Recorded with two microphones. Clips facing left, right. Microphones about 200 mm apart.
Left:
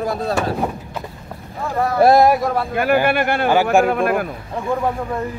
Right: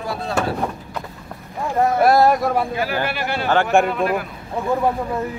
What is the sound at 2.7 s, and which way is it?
A man's voice, 55° left (ahead or behind).